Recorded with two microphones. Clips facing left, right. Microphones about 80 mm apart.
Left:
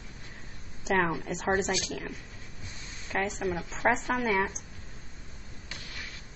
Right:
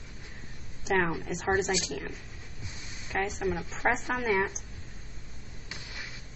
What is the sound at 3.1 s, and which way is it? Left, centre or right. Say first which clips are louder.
A woman's voice: even; centre.